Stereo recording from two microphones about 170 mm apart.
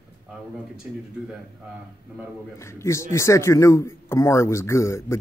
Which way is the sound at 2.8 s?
15° left (ahead or behind).